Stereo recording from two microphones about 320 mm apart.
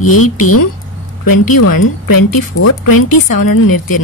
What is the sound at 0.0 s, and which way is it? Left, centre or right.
Speech, left.